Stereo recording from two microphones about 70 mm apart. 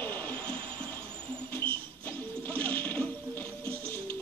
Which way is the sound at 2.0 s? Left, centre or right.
Left.